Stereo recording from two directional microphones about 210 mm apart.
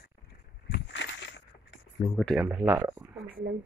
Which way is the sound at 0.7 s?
55° left (ahead or behind).